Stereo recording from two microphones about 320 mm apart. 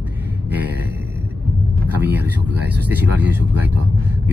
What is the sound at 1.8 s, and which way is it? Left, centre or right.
Speech, centre.